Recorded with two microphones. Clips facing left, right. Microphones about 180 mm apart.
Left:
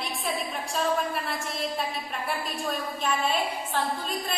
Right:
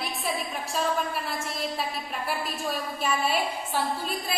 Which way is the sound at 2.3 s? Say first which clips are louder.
Even; 5° right (ahead or behind).